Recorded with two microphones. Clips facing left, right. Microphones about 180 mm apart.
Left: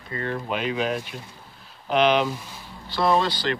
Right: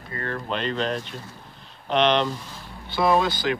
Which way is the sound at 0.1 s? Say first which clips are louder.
Left 1 dB; 15° left (ahead or behind).